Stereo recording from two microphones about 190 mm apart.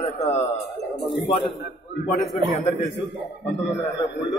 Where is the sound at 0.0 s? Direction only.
35° left (ahead or behind).